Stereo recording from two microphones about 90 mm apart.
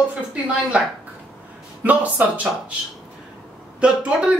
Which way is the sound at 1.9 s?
15° right (ahead or behind).